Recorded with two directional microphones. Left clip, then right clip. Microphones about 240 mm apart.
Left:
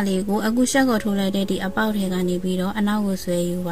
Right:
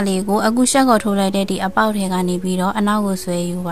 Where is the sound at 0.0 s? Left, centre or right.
Right.